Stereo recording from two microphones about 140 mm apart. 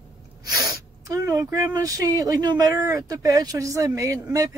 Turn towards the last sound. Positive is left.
turn(degrees=-20)  # may be behind; listen again after turning